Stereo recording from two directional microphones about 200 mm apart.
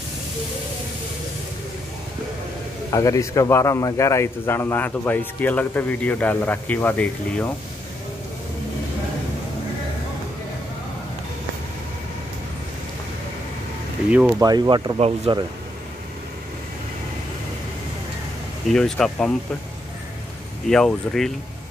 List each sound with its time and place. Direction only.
2.9 s a man's voice: 15° left (ahead or behind)
14.4 s speech: 20° right (ahead or behind)
18.7 s speech: centre (ahead or behind)
20.6 s speech: centre (ahead or behind)